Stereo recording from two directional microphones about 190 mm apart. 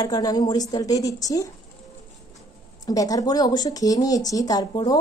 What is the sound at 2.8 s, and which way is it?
Speech, 20° left (ahead or behind).